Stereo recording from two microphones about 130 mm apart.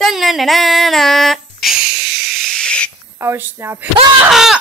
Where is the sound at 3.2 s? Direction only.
15° right (ahead or behind).